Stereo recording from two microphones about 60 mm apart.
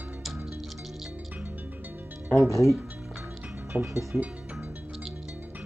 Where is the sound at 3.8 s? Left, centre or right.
Right.